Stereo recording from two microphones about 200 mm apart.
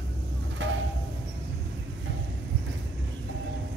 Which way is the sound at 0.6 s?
65° right (ahead or behind).